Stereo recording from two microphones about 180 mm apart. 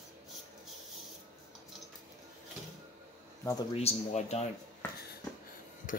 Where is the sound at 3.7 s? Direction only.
35° left (ahead or behind).